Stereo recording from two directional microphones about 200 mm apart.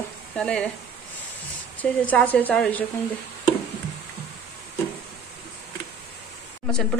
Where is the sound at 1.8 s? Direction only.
5° left (ahead or behind).